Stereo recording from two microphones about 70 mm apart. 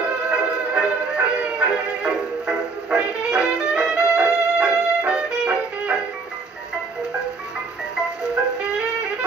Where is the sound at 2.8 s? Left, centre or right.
Centre.